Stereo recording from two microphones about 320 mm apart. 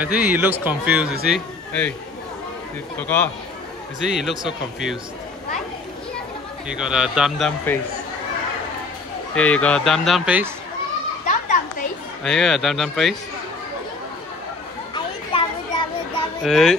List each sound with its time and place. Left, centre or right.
0.0 s speech: centre
3.0 s speech: centre
6.7 s speech: centre
9.3 s speech: centre
11.2 s children playing: left
12.2 s speech: centre
15.3 s children playing: centre
16.4 s speech: centre